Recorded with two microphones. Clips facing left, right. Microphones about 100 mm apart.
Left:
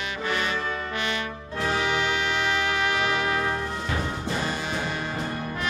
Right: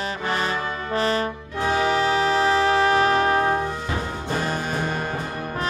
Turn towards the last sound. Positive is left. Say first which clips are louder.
# right 4 dB
turn(degrees=-50)  # may be behind; listen again after turning